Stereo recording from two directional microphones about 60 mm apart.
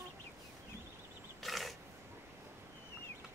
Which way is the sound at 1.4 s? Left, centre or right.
Centre.